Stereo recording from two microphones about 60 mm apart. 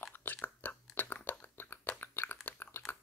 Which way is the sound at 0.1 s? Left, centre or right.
Left.